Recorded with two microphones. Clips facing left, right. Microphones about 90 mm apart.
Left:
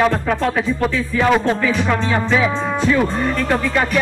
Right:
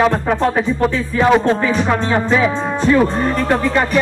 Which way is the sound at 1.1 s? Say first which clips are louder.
Right 3 dB; 20° right (ahead or behind).